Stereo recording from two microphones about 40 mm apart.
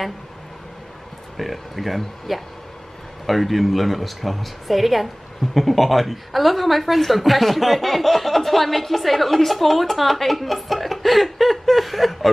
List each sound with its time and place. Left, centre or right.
1.3 s a woman's voice: centre